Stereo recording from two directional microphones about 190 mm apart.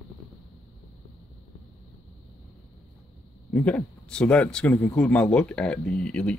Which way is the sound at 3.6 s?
5° left (ahead or behind).